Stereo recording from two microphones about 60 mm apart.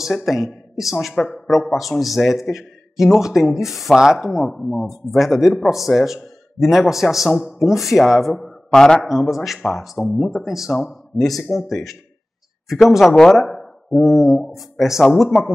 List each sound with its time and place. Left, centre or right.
0.0 s a man's voice: centre
1.2 s speech: centre
1.5 s a man's voice: centre
9.0 s a man's voice: centre
13.1 s speech: centre
13.5 s a sound: centre
14.4 s a man's voice: centre
15.2 s speech: centre